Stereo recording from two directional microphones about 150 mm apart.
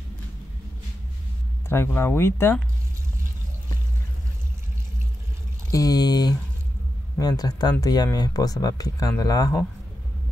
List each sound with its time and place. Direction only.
1.7 s speech: 15° left (ahead or behind)
5.7 s speech: 25° left (ahead or behind)